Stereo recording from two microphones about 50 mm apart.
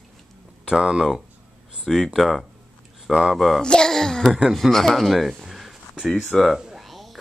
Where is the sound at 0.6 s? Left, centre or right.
Centre.